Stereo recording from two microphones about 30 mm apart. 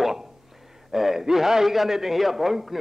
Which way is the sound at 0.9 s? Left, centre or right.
Centre.